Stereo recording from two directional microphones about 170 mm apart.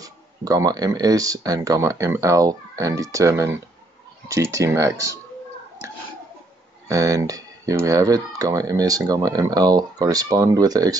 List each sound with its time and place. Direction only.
0.0 s speech: 20° right (ahead or behind)
6.9 s speech: 20° right (ahead or behind)